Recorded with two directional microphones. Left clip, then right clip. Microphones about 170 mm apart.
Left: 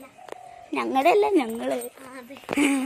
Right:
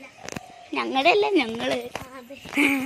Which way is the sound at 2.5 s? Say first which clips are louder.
Right 2 dB; 20° left (ahead or behind).